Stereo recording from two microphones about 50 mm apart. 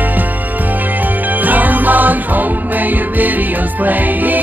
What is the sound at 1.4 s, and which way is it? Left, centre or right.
Music, right.